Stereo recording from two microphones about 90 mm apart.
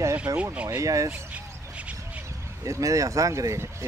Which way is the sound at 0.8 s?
35° right (ahead or behind).